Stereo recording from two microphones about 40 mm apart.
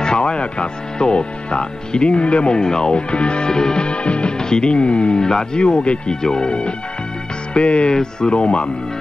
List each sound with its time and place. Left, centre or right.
0.0 s speech: left